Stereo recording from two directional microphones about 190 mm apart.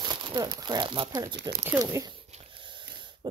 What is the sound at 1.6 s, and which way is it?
Speech, 10° right (ahead or behind).